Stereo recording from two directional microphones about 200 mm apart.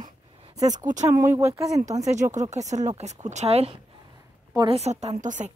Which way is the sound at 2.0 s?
35° right (ahead or behind).